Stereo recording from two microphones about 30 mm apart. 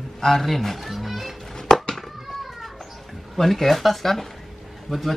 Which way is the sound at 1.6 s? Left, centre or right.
Centre.